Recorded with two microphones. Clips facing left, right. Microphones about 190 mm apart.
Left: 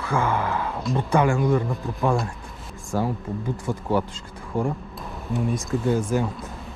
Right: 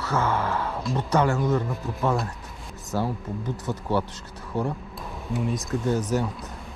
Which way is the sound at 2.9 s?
15° left (ahead or behind).